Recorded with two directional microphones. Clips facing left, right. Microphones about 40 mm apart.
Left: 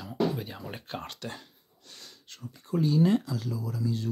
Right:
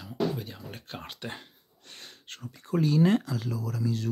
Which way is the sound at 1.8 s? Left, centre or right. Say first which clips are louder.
Right 2 dB; right.